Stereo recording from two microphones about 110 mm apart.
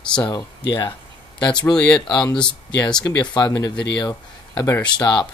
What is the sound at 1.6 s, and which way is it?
Speech, 10° left (ahead or behind).